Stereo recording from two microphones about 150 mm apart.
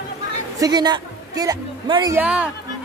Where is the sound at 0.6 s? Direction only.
25° right (ahead or behind).